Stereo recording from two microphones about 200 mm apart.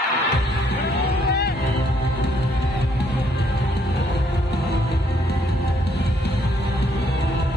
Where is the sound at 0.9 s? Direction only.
55° left (ahead or behind).